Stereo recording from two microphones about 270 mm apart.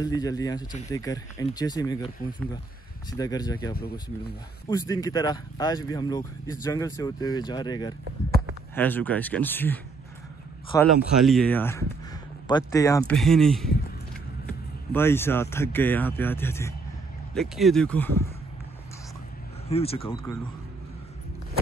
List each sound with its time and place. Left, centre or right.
0.0 s speech: centre
3.1 s speech: centre
11.0 s speech: centre
14.9 s speech: centre
19.7 s speech: left